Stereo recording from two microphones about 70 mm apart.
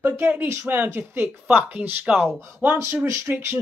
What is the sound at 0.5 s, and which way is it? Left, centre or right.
Speech, right.